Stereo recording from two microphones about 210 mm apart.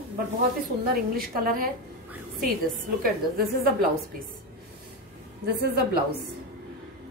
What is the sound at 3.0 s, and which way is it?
Speech, 45° right (ahead or behind).